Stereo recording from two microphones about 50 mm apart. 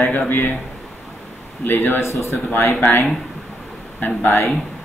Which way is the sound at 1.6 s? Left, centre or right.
Left.